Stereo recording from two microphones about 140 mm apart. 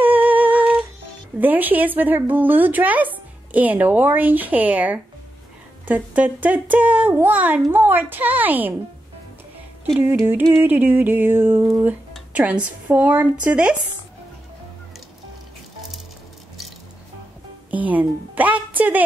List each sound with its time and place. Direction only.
0.0 s humming: 10° right (ahead or behind)
1.4 s speech: 15° right (ahead or behind)
9.9 s speech: 15° right (ahead or behind)
17.6 s speech: 10° right (ahead or behind)